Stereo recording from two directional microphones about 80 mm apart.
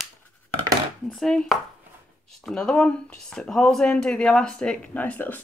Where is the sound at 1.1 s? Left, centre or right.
Centre.